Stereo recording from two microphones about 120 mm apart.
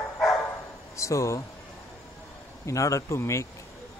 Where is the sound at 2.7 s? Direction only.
25° left (ahead or behind).